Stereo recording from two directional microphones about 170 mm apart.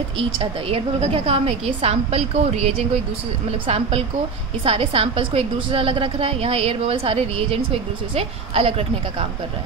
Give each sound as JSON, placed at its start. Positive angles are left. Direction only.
{"t": 0.4, "sound": "a woman's voice", "side_deg": -35}